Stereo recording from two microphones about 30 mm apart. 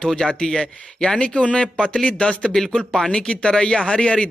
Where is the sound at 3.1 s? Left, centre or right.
Left.